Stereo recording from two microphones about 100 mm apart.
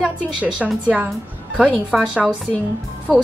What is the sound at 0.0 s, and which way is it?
A woman's voice, 10° right (ahead or behind).